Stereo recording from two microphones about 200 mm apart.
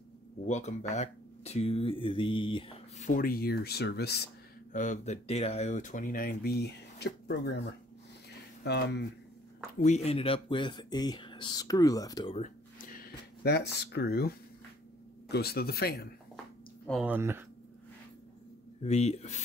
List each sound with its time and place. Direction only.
0.5 s speech: 35° left (ahead or behind)
3.1 s speech: 45° left (ahead or behind)
4.7 s speech: 35° left (ahead or behind); by 7.6 s 55° left (ahead or behind)
8.6 s speech: 55° left (ahead or behind)
9.8 s speech: 30° left (ahead or behind)
12.4 s a sound: 45° left (ahead or behind)
15.3 s speech: 50° left (ahead or behind)
17.0 s speech: 10° right (ahead or behind)
18.8 s speech: 35° left (ahead or behind)